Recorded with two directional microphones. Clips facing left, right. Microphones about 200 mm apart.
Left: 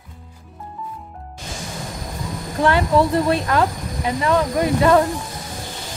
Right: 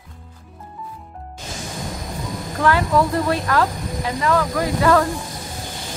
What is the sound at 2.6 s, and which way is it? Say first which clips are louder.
Speech: left 1 dB; 25° left (ahead or behind).